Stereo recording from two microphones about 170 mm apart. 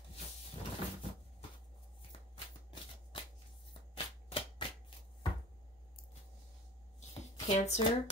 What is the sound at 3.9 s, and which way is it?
Shuffling cards, 30° left (ahead or behind).